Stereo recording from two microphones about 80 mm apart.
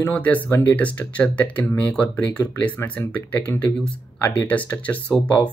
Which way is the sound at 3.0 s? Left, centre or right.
Left.